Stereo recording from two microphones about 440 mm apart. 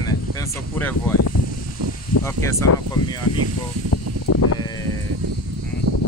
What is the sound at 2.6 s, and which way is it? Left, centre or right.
Speech, left.